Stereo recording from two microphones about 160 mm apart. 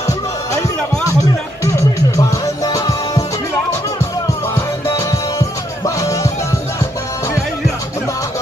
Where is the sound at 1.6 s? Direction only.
20° left (ahead or behind).